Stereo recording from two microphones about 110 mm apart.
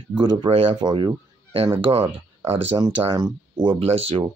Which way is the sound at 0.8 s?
45° right (ahead or behind).